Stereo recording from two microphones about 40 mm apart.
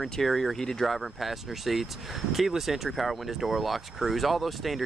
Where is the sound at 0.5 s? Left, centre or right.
Centre.